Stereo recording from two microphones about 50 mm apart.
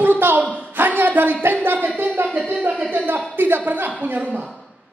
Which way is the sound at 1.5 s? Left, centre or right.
Right.